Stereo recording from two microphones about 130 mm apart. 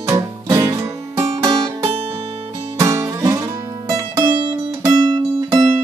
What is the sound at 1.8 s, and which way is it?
Music, 45° right (ahead or behind).